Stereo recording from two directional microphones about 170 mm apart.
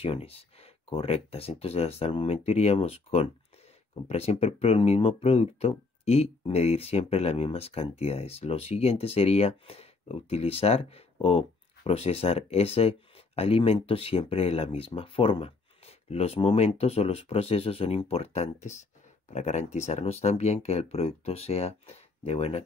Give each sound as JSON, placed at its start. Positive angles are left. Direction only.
{"t": 0.0, "sound": "speech", "side_deg": 35}